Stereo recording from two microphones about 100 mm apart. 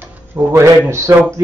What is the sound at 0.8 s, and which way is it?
Speech, 30° right (ahead or behind).